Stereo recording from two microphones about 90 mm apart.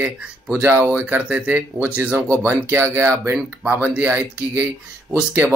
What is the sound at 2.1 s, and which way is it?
Speech, 35° right (ahead or behind).